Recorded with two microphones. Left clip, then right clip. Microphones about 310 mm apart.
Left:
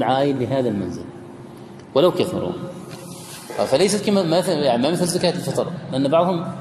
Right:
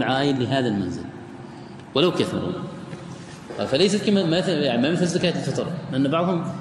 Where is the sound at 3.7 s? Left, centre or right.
Centre.